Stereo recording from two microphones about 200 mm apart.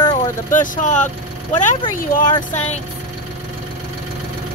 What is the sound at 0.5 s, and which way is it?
Speech, 40° left (ahead or behind).